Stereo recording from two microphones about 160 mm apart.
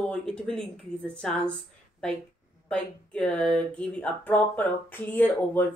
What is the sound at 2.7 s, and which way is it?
Speech, 5° left (ahead or behind).